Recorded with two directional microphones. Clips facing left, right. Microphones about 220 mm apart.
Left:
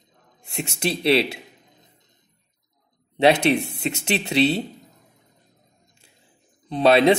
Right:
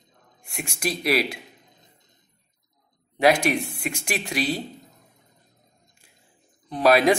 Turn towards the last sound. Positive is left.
turn(degrees=25)  # may be behind; listen again after turning